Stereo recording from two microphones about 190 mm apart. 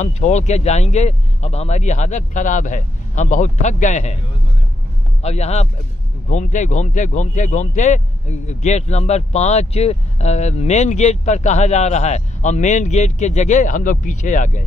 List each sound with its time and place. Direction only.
0.0 s speech: 40° left (ahead or behind)
5.2 s speech: 35° left (ahead or behind)